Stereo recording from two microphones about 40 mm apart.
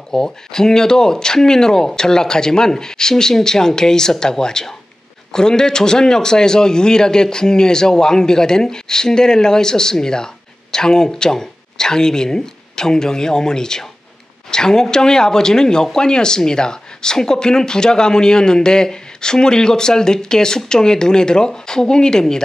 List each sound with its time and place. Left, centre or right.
0.1 s a man's voice: centre